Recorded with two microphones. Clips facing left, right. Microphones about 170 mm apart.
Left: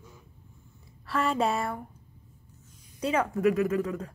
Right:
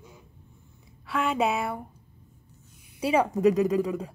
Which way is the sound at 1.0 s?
Centre (ahead or behind).